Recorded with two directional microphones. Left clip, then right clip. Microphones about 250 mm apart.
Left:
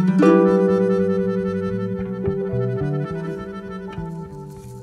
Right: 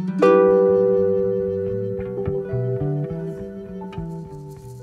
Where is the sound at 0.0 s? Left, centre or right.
Centre.